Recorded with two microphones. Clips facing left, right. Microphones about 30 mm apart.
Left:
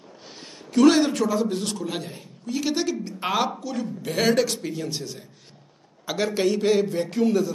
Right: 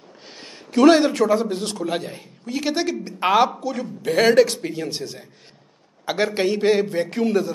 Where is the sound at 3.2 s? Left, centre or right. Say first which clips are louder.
Right 9 dB; right.